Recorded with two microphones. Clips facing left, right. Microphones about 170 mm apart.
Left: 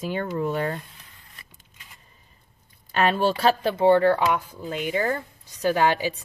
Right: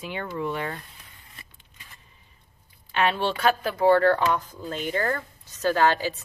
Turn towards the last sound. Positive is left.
turn(degrees=15)  # may be behind; listen again after turning